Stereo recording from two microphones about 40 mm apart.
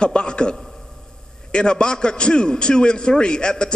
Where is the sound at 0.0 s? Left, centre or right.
Left.